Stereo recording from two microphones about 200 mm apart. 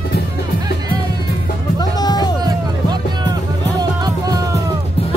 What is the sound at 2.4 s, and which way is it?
Music, 20° right (ahead or behind).